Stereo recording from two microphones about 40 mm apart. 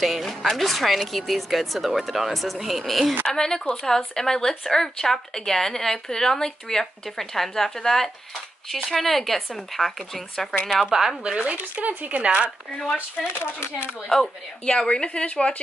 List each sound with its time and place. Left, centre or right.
0.0 s speech: centre
3.3 s speech: centre
10.7 s speech: centre
11.2 s speech: right
11.9 s speech: right
12.2 s speech: right
12.4 s speech: centre
14.1 s speech: centre
14.8 s speech: left